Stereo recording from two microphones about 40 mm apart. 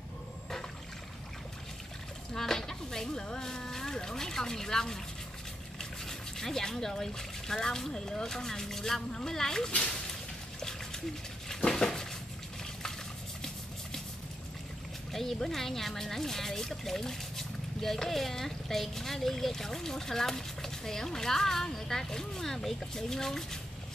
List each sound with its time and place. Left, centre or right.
2.3 s speech: centre
11.4 s dishes: centre
15.4 s speech: centre